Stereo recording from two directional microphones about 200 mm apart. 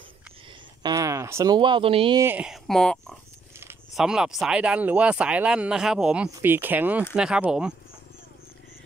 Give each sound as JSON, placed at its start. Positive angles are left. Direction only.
{"t": 0.8, "sound": "speech", "side_deg": -15}
{"t": 2.2, "sound": "speech", "side_deg": -5}